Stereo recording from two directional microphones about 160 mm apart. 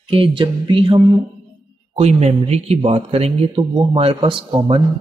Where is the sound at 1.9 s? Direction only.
40° right (ahead or behind).